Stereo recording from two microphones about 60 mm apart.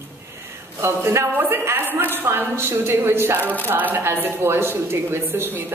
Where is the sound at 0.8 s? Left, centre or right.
Right.